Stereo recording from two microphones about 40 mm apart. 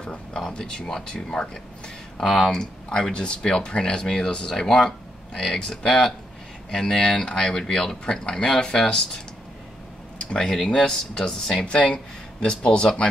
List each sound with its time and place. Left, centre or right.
0.0 s speech: left
10.1 s a sound: left
10.7 s speech: centre
11.6 s speech: left